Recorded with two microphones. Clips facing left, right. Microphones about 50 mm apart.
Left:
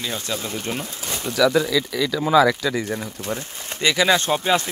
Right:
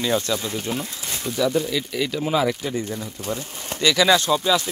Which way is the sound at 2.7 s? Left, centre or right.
Left.